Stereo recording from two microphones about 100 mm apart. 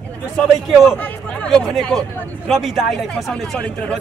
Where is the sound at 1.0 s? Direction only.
10° left (ahead or behind).